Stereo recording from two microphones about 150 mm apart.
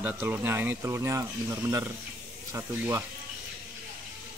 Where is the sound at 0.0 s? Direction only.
10° right (ahead or behind).